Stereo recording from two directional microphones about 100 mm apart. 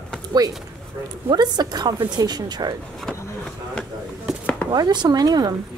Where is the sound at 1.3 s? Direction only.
45° right (ahead or behind).